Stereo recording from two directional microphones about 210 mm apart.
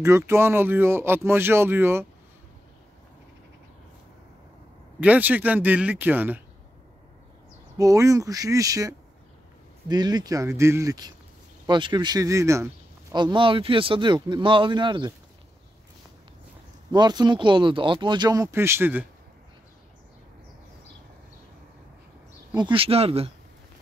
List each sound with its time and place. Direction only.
0.0 s speech: 10° right (ahead or behind)
5.0 s speech: 5° right (ahead or behind)
7.7 s speech: 15° right (ahead or behind)
16.9 s speech: 20° right (ahead or behind)
22.5 s speech: 20° right (ahead or behind)